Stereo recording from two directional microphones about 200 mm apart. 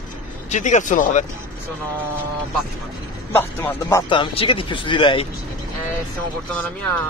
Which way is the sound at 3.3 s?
15° left (ahead or behind).